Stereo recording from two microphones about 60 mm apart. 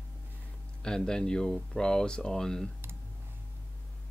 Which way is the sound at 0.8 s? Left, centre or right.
Centre.